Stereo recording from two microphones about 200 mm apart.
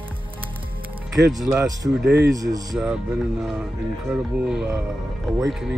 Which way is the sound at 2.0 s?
60° right (ahead or behind).